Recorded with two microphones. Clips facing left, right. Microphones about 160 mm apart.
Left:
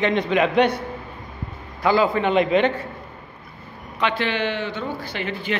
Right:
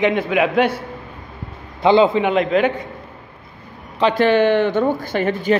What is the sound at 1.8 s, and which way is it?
Speech, 25° right (ahead or behind).